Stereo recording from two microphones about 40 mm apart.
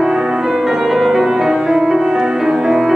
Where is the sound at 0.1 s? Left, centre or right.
Centre.